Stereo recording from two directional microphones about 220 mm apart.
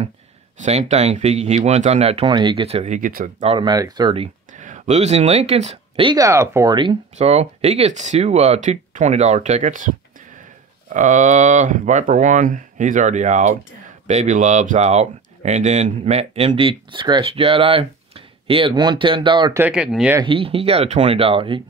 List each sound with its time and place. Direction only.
0.6 s speech: 30° right (ahead or behind)
3.4 s speech: 20° right (ahead or behind)
19.6 s speech: 5° right (ahead or behind)
20.2 s speech: 25° right (ahead or behind)